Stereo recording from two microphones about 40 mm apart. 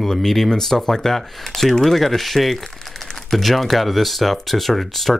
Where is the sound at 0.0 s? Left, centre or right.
Centre.